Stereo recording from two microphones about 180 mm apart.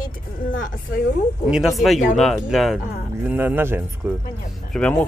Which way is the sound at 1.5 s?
Centre (ahead or behind).